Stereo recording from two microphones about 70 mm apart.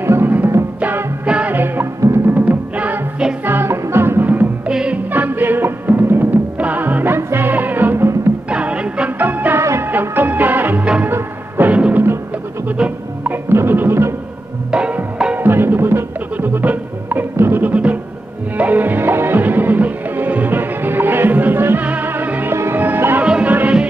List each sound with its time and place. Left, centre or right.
0.0 s music: right; by 3.3 s centre
3.4 s music: right
4.6 s music: centre
5.1 s music: right
8.5 s music: centre
9.6 s music: right
9.8 s music: right
11.7 s music: centre
13.2 s music: right
14.7 s music: centre
15.3 s music: right
17.6 s music: centre
23.2 s music: centre